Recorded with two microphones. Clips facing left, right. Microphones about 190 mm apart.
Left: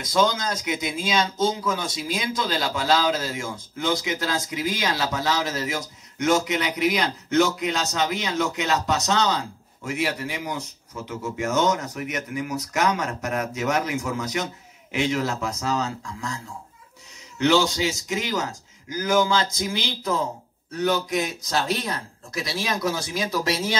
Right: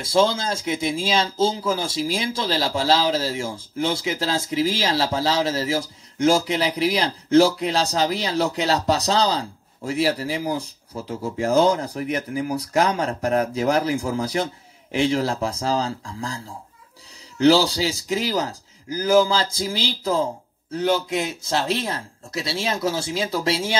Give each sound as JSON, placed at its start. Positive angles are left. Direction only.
{"t": 0.0, "sound": "speech", "side_deg": -30}